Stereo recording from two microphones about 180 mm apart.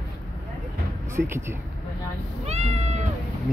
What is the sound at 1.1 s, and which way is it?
Speech, 15° right (ahead or behind).